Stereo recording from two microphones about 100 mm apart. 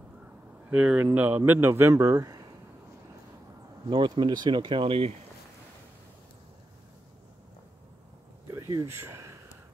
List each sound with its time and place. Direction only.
0.7 s speech: 15° right (ahead or behind); by 2.4 s 35° right (ahead or behind)
3.9 s speech: 50° right (ahead or behind); by 5.1 s 65° right (ahead or behind)
8.5 s a sound: 40° right (ahead or behind)
8.8 s speech: 25° right (ahead or behind)